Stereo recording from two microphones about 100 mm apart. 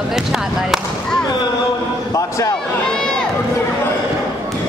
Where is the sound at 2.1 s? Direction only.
35° left (ahead or behind).